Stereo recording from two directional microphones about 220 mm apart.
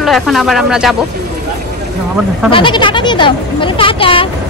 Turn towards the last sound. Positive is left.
turn(degrees=25)  # may be behind; listen again after turning